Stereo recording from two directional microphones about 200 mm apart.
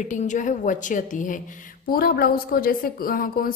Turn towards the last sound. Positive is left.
turn(degrees=45)  # may be behind; listen again after turning